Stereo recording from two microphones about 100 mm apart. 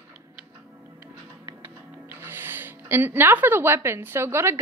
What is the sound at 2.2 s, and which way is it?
Speech, 20° right (ahead or behind).